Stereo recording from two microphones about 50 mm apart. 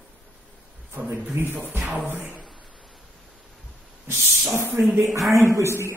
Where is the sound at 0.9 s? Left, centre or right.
Right.